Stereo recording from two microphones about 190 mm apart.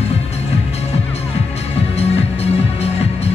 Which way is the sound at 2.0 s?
35° left (ahead or behind).